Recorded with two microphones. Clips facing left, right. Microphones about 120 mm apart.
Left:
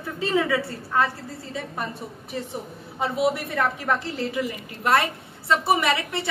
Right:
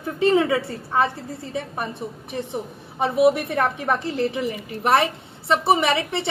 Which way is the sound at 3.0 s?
20° right (ahead or behind).